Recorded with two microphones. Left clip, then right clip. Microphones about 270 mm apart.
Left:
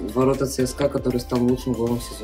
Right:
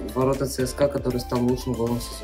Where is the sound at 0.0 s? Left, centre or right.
Centre.